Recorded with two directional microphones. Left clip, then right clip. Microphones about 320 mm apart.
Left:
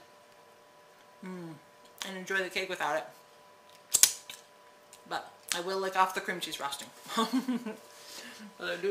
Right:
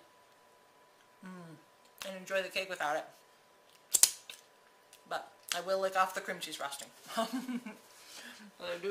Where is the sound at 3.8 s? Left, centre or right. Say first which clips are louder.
Left 3 dB; centre.